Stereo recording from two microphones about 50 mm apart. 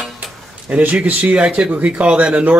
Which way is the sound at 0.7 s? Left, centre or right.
Right.